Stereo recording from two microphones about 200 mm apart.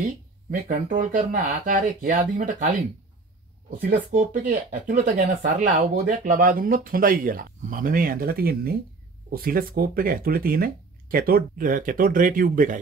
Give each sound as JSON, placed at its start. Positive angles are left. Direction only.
{"t": 0.7, "sound": "speech", "side_deg": -40}